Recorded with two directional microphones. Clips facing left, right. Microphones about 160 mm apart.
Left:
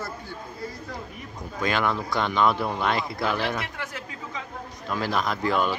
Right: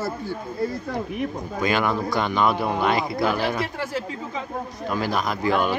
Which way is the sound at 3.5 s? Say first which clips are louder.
Right 7 dB; 30° right (ahead or behind).